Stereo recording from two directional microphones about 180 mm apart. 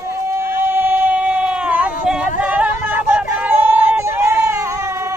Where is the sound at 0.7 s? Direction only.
10° right (ahead or behind).